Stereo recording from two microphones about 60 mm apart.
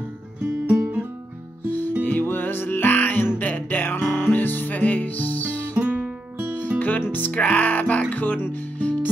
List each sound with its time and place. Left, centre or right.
0.7 s music: right
2.0 s music: left
5.8 s guitar: right
7.1 s music: left